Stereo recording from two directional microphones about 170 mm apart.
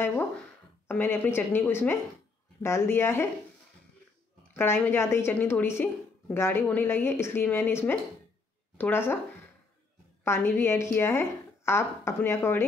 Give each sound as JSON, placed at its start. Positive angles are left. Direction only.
{"t": 0.8, "sound": "a woman's voice", "side_deg": 15}
{"t": 4.6, "sound": "a woman's voice", "side_deg": 10}
{"t": 10.2, "sound": "a woman's voice", "side_deg": 15}